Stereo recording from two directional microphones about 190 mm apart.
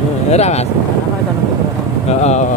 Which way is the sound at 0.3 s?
35° left (ahead or behind).